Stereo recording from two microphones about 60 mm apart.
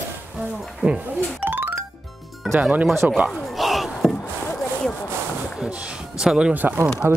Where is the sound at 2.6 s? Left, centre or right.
Right.